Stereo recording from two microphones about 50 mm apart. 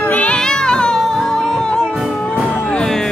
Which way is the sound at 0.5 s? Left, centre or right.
Centre.